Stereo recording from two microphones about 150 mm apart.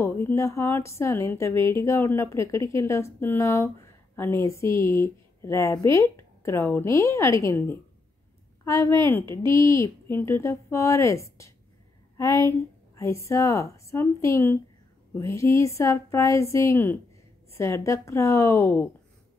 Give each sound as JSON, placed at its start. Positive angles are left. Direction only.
{"t": 0.0, "sound": "a woman's voice", "side_deg": 15}